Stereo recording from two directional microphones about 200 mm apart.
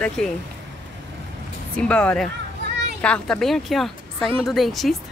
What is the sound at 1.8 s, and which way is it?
Speech, 5° left (ahead or behind).